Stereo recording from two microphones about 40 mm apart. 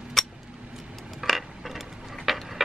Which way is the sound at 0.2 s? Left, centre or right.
Centre.